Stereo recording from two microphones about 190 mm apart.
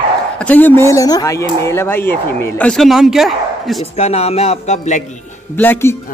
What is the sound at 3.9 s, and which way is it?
A man's voice, 35° left (ahead or behind).